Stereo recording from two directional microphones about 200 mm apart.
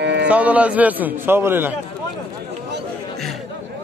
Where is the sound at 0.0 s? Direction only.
60° right (ahead or behind).